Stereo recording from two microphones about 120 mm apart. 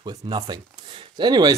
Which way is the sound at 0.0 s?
35° right (ahead or behind).